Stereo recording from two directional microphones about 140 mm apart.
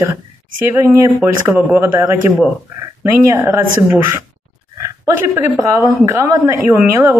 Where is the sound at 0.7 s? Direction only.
20° right (ahead or behind).